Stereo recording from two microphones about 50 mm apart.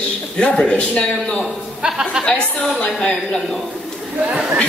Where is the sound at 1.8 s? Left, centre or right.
Centre.